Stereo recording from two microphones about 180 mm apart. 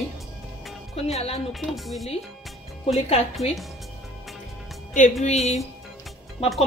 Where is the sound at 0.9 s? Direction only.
35° left (ahead or behind).